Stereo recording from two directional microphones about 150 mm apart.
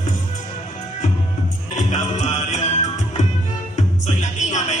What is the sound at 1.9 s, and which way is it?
Music, 50° left (ahead or behind).